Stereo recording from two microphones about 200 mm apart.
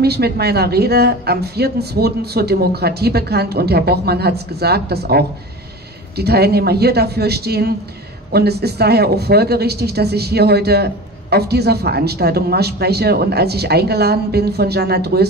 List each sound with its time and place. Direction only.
0.0 s speech: 55° right (ahead or behind)